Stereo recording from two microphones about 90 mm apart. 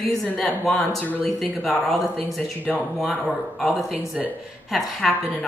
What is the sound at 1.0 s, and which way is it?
Speech, 20° left (ahead or behind).